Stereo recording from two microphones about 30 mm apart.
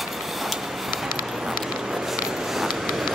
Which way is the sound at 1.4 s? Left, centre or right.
Centre.